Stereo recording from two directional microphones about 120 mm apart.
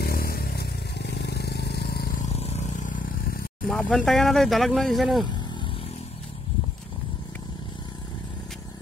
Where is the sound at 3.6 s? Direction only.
10° left (ahead or behind).